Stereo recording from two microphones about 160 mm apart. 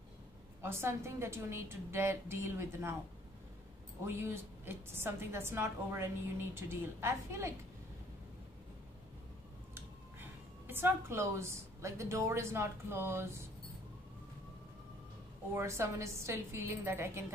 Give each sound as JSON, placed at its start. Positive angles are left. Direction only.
{"t": 0.6, "sound": "a woman's voice", "side_deg": -15}
{"t": 4.0, "sound": "a woman's voice", "side_deg": -15}
{"t": 10.7, "sound": "a woman's voice", "side_deg": -15}
{"t": 15.5, "sound": "a woman's voice", "side_deg": -15}